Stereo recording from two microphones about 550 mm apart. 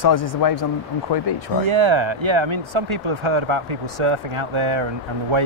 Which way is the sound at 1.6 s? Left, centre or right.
Right.